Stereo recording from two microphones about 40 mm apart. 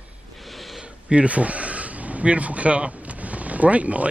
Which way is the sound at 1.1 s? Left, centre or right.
Right.